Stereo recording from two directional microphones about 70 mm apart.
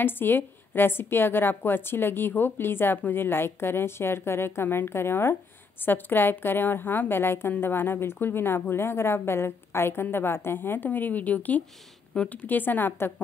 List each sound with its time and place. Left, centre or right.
0.0 s a woman's voice: left